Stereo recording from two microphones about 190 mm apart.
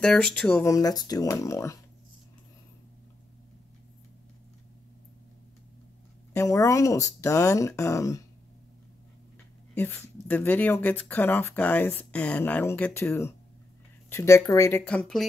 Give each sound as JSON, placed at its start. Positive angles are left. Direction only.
{"t": 0.0, "sound": "speech", "side_deg": 5}
{"t": 0.7, "sound": "speech", "side_deg": 20}
{"t": 6.3, "sound": "speech", "side_deg": 15}
{"t": 9.8, "sound": "speech", "side_deg": 10}